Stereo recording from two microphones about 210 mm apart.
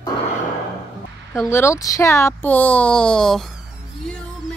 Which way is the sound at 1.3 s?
10° left (ahead or behind).